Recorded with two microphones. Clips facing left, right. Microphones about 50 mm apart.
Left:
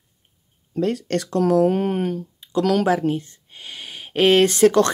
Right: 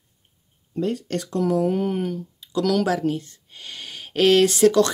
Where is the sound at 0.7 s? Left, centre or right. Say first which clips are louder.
Left 3 dB; left.